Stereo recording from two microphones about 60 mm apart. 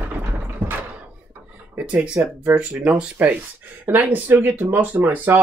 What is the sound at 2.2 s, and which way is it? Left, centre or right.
Speech, right.